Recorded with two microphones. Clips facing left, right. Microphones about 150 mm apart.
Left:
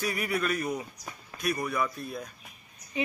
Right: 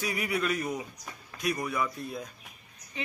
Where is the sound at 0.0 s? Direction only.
15° right (ahead or behind).